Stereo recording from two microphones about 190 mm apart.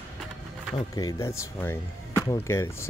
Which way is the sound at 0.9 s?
20° left (ahead or behind).